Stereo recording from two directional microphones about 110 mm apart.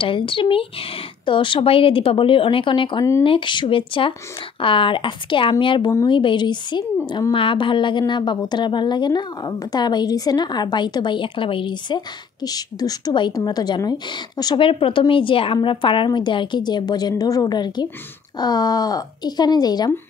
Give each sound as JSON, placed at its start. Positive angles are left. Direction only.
{"t": 0.0, "sound": "a woman's voice", "side_deg": 50}
{"t": 14.6, "sound": "a woman's voice", "side_deg": 55}